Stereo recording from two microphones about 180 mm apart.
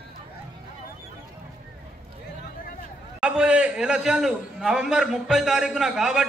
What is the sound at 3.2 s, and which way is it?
A man's voice, 5° right (ahead or behind).